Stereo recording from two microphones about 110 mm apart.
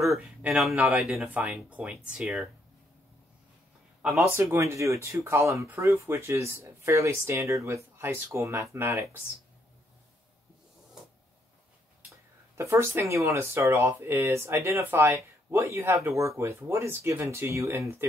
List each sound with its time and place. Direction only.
0.8 s speech: 5° right (ahead or behind)
4.4 s speech: 25° right (ahead or behind)
12.5 s speech: 25° right (ahead or behind)